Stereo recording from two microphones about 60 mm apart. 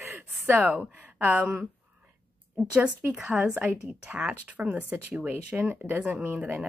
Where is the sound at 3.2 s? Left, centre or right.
Centre.